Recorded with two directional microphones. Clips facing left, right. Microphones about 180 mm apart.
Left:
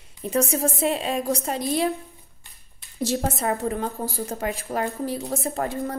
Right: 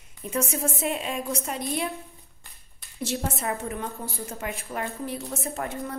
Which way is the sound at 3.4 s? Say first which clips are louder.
Left 5 dB; 35° left (ahead or behind).